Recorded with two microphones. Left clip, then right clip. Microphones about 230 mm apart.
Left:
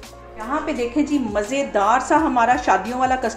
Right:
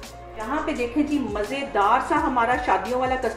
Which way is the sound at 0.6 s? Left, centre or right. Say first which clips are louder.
Left 3 dB; left.